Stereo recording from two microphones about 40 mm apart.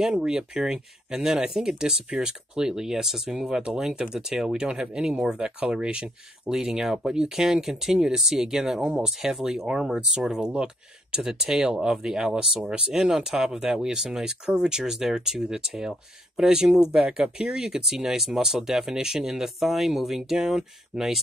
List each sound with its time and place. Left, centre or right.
0.3 s speech: centre
6.5 s speech: centre
20.9 s speech: right